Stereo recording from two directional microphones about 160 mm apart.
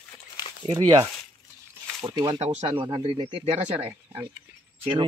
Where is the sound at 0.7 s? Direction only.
20° right (ahead or behind).